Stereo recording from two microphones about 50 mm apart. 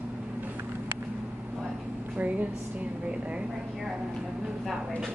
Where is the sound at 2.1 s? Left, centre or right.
Right.